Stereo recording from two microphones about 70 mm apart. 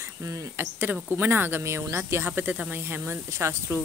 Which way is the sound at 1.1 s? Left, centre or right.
Right.